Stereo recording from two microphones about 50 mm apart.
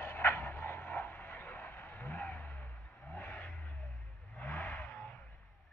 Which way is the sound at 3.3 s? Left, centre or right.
Left.